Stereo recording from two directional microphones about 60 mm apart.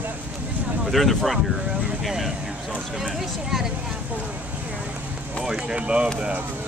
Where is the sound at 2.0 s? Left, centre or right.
Centre.